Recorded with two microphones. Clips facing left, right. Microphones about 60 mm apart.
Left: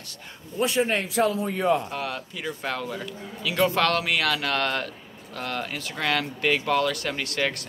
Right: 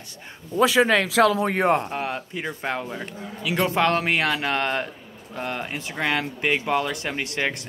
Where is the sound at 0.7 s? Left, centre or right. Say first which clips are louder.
Right 4 dB; right.